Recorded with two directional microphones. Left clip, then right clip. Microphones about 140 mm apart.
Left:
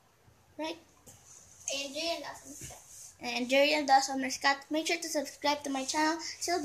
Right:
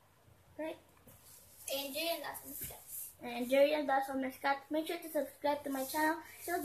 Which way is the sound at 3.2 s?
10° left (ahead or behind).